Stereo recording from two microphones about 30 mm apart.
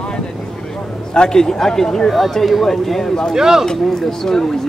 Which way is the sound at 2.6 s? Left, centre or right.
Centre.